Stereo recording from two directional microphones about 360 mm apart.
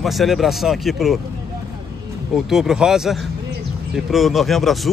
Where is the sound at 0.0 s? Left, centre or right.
Centre.